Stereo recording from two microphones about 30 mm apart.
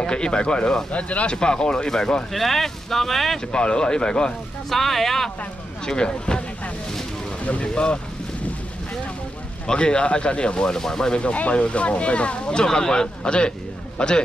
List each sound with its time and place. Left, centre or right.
0.0 s speech: left
0.9 s speech: left
1.2 s speech: left
2.3 s speech: centre
3.5 s speech: left
4.6 s speech: centre
5.9 s speech: left
7.6 s speech: left
9.7 s speech: left
11.5 s speech: left
12.6 s a man's voice: left